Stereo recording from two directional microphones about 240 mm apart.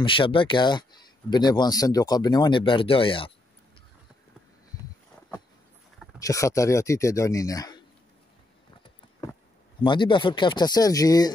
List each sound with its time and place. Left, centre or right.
0.0 s speech: left
4.7 s a sound: centre
6.1 s speech: centre
9.8 s speech: centre